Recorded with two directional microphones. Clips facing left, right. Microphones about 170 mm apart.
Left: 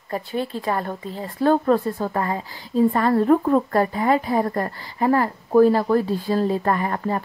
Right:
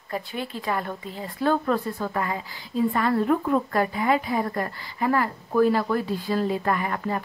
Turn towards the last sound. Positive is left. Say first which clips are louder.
# left 3 dB
turn(degrees=35)  # may be behind; listen again after turning